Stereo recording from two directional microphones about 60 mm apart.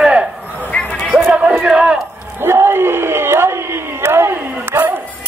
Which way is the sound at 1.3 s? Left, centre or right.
Centre.